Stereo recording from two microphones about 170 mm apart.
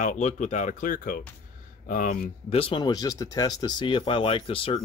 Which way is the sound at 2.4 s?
35° left (ahead or behind).